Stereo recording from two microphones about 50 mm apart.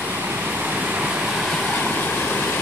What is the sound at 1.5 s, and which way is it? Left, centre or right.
Waves, centre.